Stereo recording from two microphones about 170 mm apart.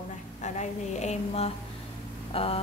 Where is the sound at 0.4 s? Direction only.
45° left (ahead or behind).